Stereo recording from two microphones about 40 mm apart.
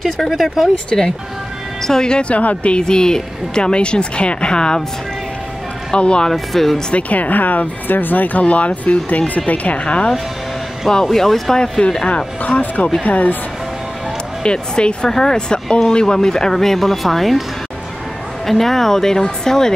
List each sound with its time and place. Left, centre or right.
0.3 s speech: centre
0.9 s speech: centre
2.0 s speech: left
2.8 s speech: centre
5.9 s speech: left
6.3 s speech: centre
6.9 s speech: left
10.9 s speech: centre
11.5 s speech: centre
12.4 s speech: left
14.4 s speech: left; by 17.4 s centre
18.5 s speech: centre